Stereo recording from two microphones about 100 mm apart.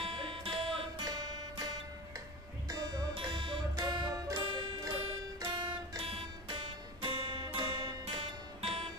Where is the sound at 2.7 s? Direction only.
35° right (ahead or behind).